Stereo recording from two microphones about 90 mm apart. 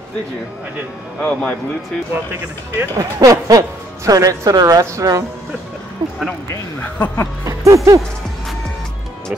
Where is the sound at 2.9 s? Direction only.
40° right (ahead or behind).